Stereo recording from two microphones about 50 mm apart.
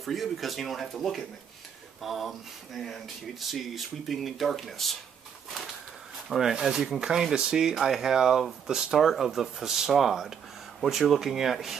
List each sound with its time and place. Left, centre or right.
0.0 s speech: centre
6.1 s a sound: centre
6.5 s speech: centre